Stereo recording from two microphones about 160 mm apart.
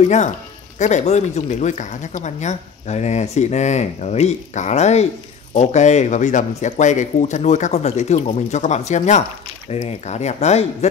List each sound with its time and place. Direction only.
0.7 s speech: 45° left (ahead or behind)